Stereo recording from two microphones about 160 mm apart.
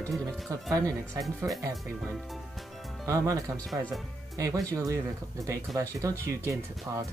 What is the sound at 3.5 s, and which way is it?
Speech, centre (ahead or behind).